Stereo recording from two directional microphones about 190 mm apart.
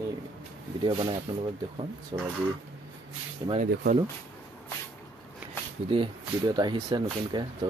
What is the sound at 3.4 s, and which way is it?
Speech, 20° right (ahead or behind).